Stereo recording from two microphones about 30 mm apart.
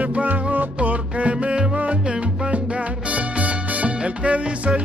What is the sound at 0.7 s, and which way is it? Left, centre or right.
Music, right.